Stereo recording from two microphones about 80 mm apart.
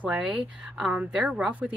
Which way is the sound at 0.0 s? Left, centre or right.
Centre.